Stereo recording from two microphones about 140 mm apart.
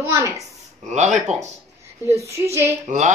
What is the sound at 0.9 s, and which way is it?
Speech, 55° right (ahead or behind).